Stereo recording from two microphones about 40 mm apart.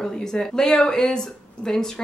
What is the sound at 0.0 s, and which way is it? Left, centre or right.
Speech, centre.